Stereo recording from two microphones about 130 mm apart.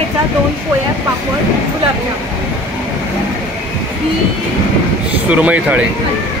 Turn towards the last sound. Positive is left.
turn(degrees=-10)  # may be behind; listen again after turning